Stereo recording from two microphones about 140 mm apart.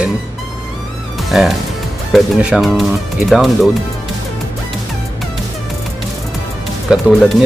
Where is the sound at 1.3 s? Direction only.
5° right (ahead or behind).